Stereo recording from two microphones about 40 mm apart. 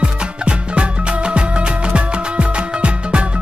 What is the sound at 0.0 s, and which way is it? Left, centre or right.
Music, right.